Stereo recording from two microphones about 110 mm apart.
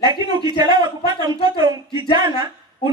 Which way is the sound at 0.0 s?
40° right (ahead or behind).